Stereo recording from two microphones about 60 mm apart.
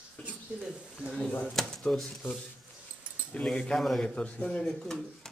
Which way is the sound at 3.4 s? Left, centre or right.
Left.